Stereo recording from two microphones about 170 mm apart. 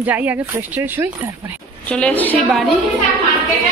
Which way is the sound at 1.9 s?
10° left (ahead or behind).